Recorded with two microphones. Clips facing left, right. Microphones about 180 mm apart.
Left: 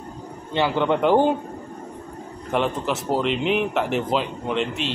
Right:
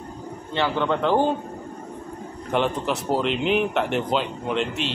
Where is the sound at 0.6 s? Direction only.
15° left (ahead or behind).